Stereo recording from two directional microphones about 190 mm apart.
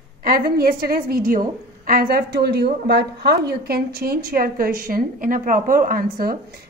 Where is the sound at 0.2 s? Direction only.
50° right (ahead or behind).